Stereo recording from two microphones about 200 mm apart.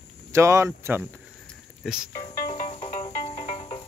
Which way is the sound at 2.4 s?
40° left (ahead or behind).